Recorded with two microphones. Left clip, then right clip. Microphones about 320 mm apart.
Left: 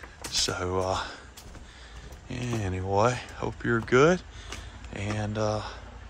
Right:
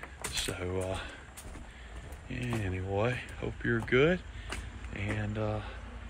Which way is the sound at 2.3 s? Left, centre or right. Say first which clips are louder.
Left 4 dB; centre.